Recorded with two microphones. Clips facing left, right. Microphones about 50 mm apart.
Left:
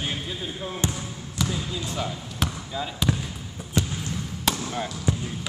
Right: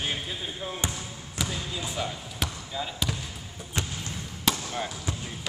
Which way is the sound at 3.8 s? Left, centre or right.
Right.